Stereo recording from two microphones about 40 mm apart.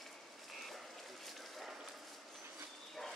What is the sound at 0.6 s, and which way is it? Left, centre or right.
Vehicle, centre.